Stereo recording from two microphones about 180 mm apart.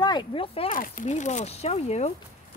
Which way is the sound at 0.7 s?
45° left (ahead or behind).